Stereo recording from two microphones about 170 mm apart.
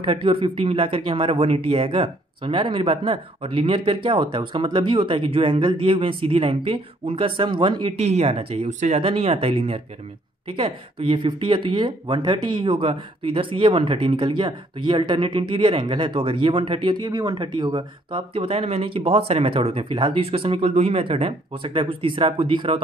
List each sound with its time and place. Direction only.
0.0 s speech: 30° right (ahead or behind)
8.6 s speech: 45° right (ahead or behind)
9.0 s speech: 35° right (ahead or behind)